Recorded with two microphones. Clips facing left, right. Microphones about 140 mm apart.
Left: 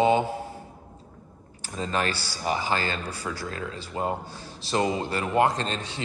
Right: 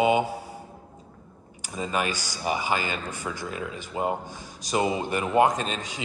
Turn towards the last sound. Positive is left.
turn(degrees=-15)  # may be behind; listen again after turning